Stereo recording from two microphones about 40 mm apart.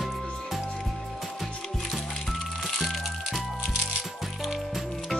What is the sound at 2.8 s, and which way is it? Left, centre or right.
Music, centre.